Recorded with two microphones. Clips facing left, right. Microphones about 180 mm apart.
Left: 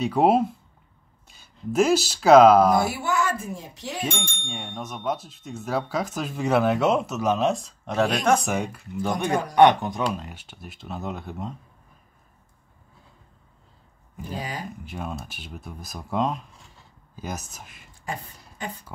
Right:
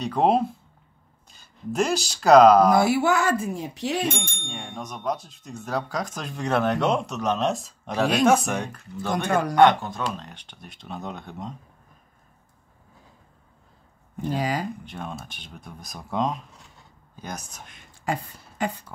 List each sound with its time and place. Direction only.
0.0 s speech: 5° left (ahead or behind)
2.7 s speech: 85° right
4.0 s speech: centre (ahead or behind)
14.3 s speech: 85° right
14.9 s speech: 5° left (ahead or behind)
18.0 s a sound: 80° right